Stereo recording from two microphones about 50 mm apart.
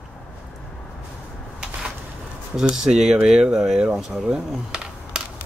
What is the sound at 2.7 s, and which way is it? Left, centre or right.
Speech, centre.